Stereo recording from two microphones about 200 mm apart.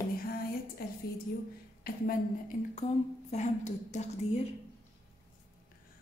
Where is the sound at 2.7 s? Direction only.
35° left (ahead or behind).